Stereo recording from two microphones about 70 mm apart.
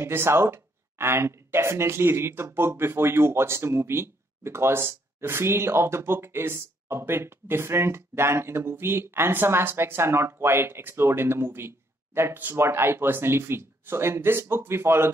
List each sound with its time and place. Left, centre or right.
0.0 s speech: right